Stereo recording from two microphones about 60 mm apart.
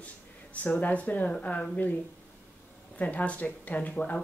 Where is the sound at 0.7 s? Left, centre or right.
Left.